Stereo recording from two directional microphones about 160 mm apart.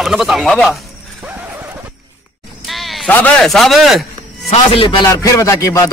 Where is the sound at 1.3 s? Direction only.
10° right (ahead or behind).